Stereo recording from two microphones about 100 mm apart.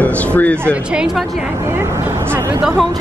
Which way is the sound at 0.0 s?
15° left (ahead or behind).